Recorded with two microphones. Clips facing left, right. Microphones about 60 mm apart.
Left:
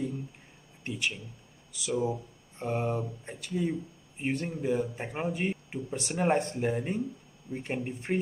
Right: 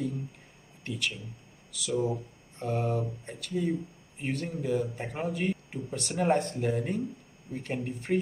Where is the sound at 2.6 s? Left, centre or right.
Left.